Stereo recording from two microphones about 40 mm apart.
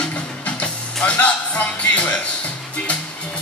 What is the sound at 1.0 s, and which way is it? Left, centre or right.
Music, left.